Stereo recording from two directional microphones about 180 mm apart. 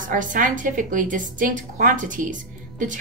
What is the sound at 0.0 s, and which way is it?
A woman's voice, 45° right (ahead or behind).